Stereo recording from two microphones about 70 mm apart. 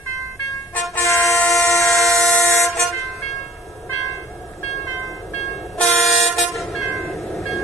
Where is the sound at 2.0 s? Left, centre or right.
Centre.